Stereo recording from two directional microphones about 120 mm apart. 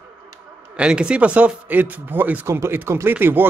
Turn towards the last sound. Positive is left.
turn(degrees=-15)  # may be behind; listen again after turning